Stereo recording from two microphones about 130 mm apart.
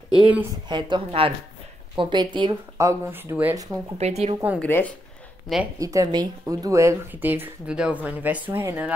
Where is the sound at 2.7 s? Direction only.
20° right (ahead or behind).